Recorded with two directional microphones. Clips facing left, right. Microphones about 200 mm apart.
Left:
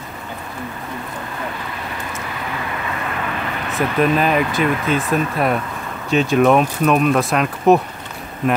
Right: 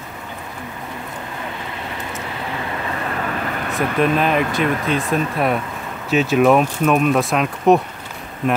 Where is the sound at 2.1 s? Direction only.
30° right (ahead or behind); by 3.7 s 45° right (ahead or behind).